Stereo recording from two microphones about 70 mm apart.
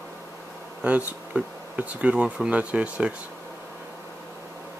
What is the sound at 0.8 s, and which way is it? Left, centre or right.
Speech, right.